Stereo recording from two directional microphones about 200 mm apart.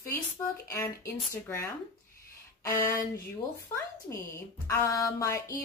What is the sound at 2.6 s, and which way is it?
Speech, 15° left (ahead or behind).